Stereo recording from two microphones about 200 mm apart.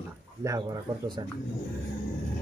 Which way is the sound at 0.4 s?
15° right (ahead or behind).